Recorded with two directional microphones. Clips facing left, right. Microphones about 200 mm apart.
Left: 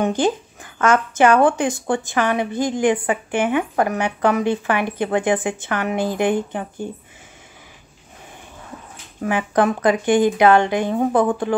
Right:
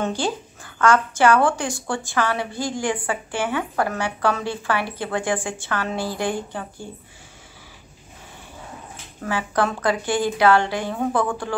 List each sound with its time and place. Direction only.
0.0 s a woman's voice: 20° left (ahead or behind)
9.2 s a woman's voice: 15° left (ahead or behind)